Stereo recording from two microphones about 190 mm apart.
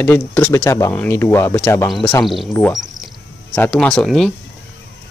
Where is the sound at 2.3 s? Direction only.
5° left (ahead or behind).